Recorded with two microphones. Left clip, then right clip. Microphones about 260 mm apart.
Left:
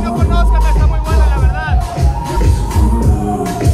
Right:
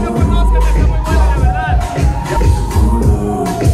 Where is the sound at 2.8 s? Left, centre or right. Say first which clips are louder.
Right 1 dB; centre.